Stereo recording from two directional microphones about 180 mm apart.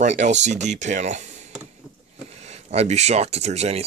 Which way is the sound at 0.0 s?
40° right (ahead or behind).